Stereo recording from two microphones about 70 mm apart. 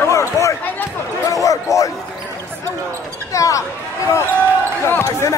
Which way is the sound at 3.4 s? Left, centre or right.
Left.